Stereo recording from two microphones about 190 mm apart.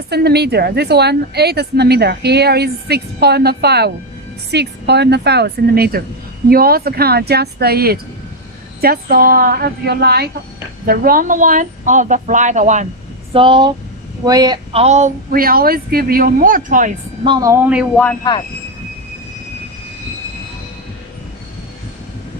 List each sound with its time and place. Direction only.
0.1 s a woman's voice: 60° right (ahead or behind); by 12.8 s 40° right (ahead or behind)
13.3 s speech: 25° right (ahead or behind); by 16.9 s 45° right (ahead or behind)
17.2 s speech: 20° right (ahead or behind)
18.3 s speech: 20° left (ahead or behind)